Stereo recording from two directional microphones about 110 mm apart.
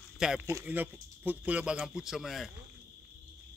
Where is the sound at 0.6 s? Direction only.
15° right (ahead or behind).